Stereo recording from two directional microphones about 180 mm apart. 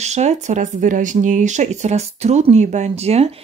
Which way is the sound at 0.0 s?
40° right (ahead or behind).